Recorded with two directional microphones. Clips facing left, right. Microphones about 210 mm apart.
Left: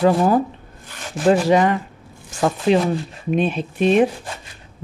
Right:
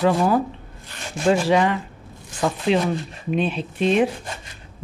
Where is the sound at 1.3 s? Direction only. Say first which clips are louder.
Left 3 dB; 45° left (ahead or behind).